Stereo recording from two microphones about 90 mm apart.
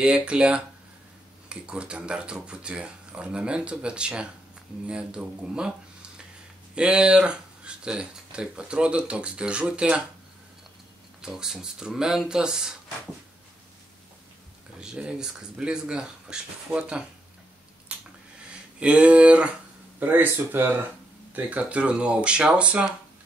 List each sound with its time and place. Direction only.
0.0 s speech: 10° right (ahead or behind)
11.1 s speech: 5° right (ahead or behind)
14.8 s speech: 10° right (ahead or behind)
17.9 s a sound: 15° right (ahead or behind)
18.8 s speech: 15° right (ahead or behind)